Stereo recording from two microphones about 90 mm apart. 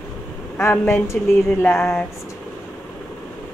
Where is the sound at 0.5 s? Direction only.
25° left (ahead or behind).